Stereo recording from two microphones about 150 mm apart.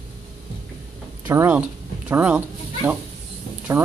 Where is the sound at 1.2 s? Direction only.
15° right (ahead or behind).